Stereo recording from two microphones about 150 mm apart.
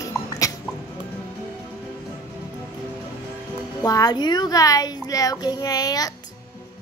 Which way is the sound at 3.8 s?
25° left (ahead or behind).